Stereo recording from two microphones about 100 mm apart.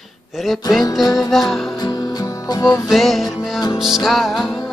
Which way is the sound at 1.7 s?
40° left (ahead or behind).